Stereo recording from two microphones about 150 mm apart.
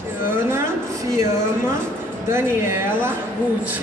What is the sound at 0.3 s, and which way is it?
A woman's voice, 15° right (ahead or behind).